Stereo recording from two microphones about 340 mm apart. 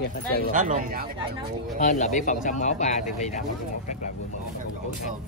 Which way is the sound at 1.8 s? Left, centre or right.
Left.